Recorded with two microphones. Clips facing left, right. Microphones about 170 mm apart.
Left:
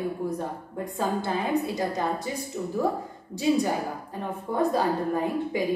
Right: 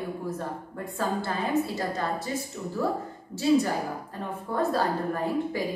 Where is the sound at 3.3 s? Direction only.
15° left (ahead or behind).